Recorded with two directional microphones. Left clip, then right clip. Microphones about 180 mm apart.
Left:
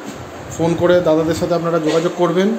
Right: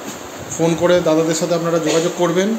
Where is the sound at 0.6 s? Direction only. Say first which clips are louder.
Left 1 dB; 5° left (ahead or behind).